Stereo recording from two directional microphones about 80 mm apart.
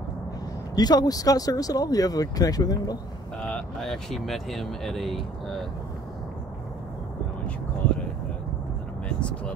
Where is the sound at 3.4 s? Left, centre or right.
Centre.